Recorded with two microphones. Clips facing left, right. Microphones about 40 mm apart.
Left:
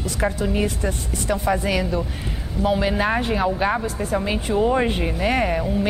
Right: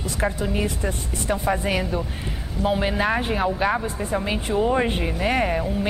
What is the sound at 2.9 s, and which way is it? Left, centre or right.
Speech, centre.